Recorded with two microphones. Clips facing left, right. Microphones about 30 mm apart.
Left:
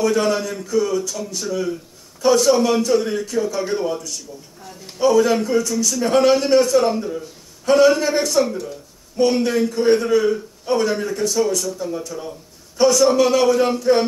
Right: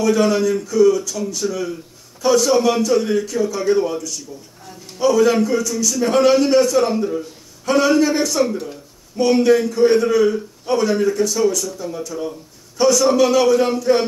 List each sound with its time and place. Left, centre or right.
0.0 s a man's voice: centre
8.5 s a sound: centre
9.2 s a man's voice: centre